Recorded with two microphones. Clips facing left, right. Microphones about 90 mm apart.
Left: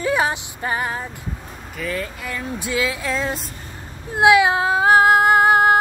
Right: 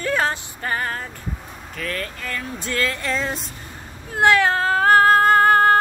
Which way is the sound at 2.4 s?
10° left (ahead or behind).